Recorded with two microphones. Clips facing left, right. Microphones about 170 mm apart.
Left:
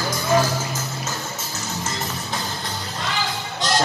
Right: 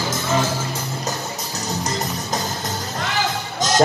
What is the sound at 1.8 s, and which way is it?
Music, 40° right (ahead or behind).